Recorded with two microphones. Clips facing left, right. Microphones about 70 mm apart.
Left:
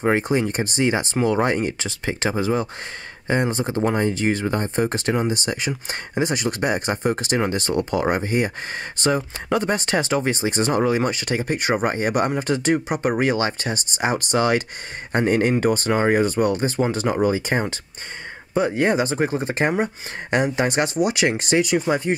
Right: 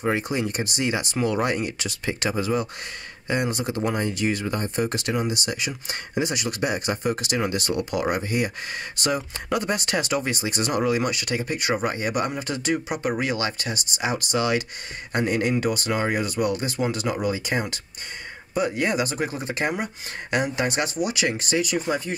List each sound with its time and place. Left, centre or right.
0.0 s speech: left